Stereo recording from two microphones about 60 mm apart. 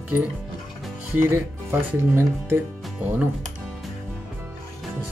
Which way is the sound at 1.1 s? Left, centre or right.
Right.